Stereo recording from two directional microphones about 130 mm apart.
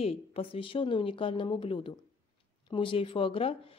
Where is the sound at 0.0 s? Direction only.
50° left (ahead or behind).